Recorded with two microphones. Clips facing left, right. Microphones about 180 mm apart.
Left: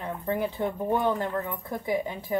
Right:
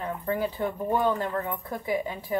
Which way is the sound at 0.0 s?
20° left (ahead or behind).